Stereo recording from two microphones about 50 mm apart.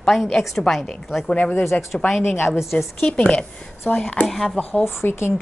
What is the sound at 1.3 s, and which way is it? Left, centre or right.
Speech, left.